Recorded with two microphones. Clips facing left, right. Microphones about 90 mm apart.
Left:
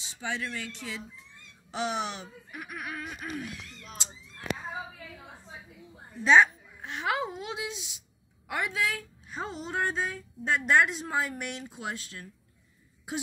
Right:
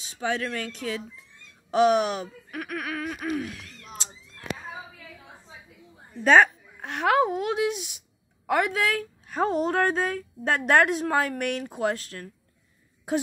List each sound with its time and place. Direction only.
0.2 s a woman's voice: 55° right (ahead or behind)
6.2 s a woman's voice: 55° right (ahead or behind)